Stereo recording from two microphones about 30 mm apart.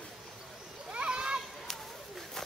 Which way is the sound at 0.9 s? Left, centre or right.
Right.